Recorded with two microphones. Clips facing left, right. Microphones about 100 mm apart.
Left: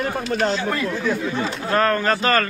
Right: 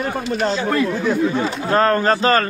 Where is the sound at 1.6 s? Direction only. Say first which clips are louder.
Right 3 dB; 30° right (ahead or behind).